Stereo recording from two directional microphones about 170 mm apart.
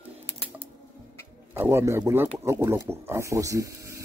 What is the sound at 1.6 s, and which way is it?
A man's voice, 15° right (ahead or behind).